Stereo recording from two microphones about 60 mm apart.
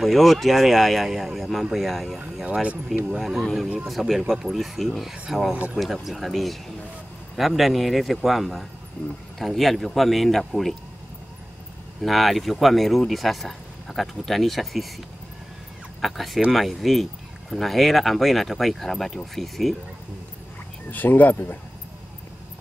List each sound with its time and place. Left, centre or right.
0.0 s speech: centre
2.4 s speech: right
3.1 s speech: centre
12.0 s speech: centre
16.0 s speech: centre
20.9 s speech: left